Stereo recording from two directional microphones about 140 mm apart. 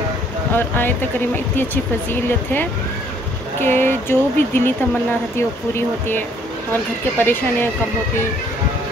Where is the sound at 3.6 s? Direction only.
15° left (ahead or behind).